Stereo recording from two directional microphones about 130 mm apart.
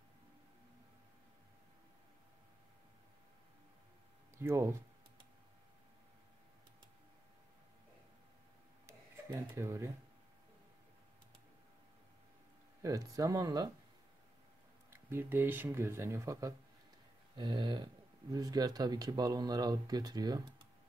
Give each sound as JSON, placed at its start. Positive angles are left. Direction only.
{"t": 4.4, "sound": "speech", "side_deg": -20}
{"t": 8.8, "sound": "a sound", "side_deg": -20}
{"t": 12.8, "sound": "speech", "side_deg": -25}
{"t": 14.9, "sound": "speech", "side_deg": -15}